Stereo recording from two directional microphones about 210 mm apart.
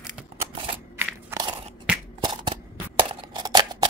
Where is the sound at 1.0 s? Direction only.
10° right (ahead or behind).